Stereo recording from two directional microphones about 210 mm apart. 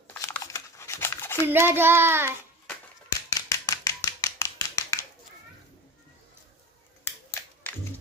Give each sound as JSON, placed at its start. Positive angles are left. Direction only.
{"t": 0.1, "sound": "crumpling", "side_deg": 10}
{"t": 1.5, "sound": "child singing", "side_deg": -10}
{"t": 3.3, "sound": "a sound", "side_deg": 15}